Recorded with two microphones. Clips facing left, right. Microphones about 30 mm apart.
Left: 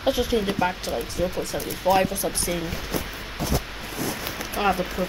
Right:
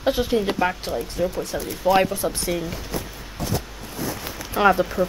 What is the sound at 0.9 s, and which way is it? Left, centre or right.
Speech, left.